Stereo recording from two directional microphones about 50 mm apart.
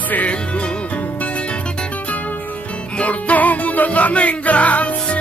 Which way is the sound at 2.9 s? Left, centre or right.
Left.